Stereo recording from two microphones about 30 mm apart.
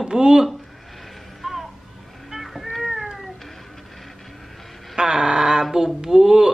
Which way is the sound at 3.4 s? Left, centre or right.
Centre.